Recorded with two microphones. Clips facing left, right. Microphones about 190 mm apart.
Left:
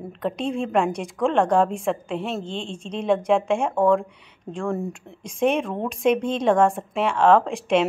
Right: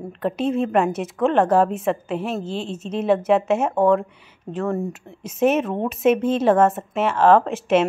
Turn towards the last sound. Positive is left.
turn(degrees=-5)  # may be behind; listen again after turning